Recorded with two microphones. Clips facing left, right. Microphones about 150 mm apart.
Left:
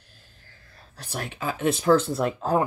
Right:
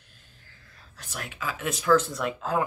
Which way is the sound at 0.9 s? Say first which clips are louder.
Left 5 dB; 30° left (ahead or behind).